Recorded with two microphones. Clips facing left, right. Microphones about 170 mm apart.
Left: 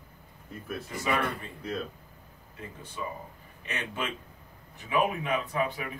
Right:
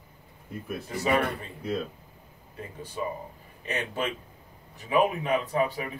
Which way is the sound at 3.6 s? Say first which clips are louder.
Right 4 dB; 35° right (ahead or behind).